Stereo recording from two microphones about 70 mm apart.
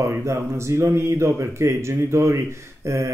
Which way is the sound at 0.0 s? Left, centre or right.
Right.